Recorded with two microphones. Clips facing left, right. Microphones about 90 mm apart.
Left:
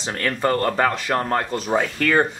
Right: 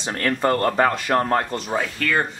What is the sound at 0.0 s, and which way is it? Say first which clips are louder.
A man's voice: right 1 dB; centre (ahead or behind).